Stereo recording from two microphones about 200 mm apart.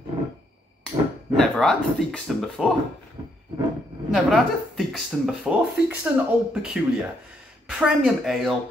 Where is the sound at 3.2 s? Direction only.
25° right (ahead or behind).